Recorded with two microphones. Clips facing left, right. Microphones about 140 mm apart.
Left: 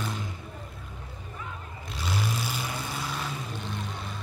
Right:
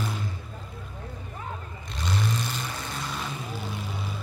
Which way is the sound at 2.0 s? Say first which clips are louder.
Right 2 dB; 5° left (ahead or behind).